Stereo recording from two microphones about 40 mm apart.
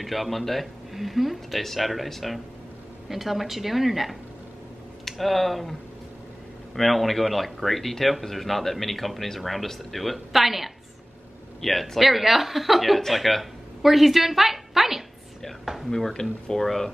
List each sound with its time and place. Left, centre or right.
0.0 s speech: centre
15.6 s a sound: centre
16.1 s speech: centre